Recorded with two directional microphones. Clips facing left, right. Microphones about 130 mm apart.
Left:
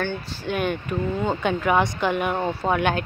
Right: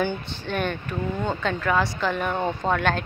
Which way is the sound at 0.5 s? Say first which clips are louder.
Left 3 dB; 10° left (ahead or behind).